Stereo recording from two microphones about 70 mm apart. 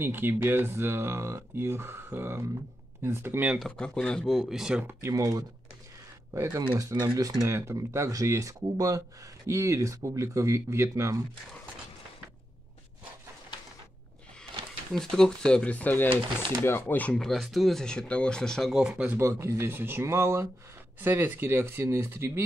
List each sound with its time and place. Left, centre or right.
0.0 s speech: right
3.5 s speech: centre
4.4 s speech: centre
5.1 s speech: right
7.4 s speech: right
15.0 s speech: centre; by 17.1 s left
17.1 s speech: centre
18.8 s speech: centre
19.1 s speech: right
21.0 s speech: right